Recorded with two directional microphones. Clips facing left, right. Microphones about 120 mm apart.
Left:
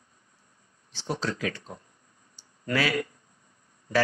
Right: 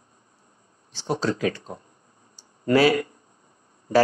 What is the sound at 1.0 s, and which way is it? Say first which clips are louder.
Speech: right 6 dB; 30° right (ahead or behind).